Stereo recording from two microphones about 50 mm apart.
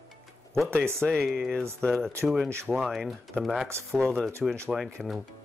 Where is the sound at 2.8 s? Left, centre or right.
Centre.